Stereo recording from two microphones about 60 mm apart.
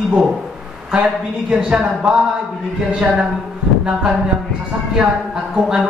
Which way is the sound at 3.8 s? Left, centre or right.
Centre.